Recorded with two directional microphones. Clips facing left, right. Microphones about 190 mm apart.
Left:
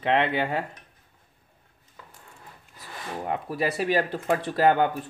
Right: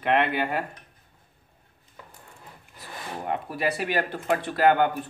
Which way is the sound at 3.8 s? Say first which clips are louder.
Left 2 dB; 35° left (ahead or behind).